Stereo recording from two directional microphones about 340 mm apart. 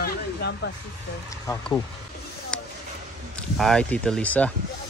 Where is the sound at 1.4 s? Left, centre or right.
Centre.